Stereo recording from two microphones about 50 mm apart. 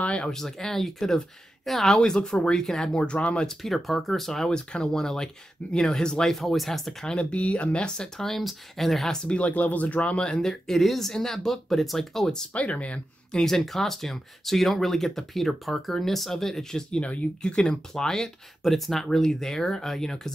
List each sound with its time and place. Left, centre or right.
0.0 s a sound: left
0.3 s speech: centre
3.4 s speech: centre
6.3 s speech: centre
7.1 s speech: left
8.2 s speech: centre
9.4 s speech: left; by 12.4 s centre
12.5 s speech: left
13.3 s speech: centre